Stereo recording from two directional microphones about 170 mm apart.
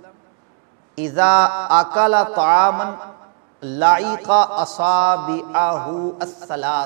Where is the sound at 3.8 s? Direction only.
10° right (ahead or behind).